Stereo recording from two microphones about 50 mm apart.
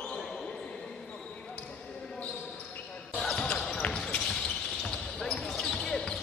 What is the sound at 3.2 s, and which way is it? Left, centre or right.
Basketball bounce, centre.